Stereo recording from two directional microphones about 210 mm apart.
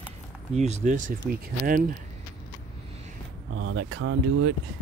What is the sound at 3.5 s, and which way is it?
Speech, 70° right (ahead or behind).